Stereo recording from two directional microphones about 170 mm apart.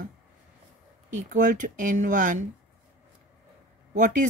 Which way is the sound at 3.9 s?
50° right (ahead or behind).